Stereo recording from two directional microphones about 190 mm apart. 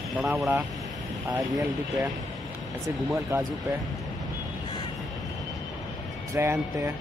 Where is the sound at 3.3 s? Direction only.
10° right (ahead or behind).